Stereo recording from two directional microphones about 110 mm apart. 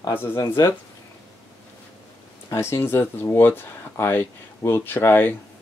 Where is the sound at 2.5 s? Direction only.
25° left (ahead or behind).